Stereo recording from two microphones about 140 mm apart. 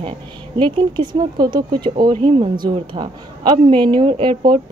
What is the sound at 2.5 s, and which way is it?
Speech, 30° right (ahead or behind).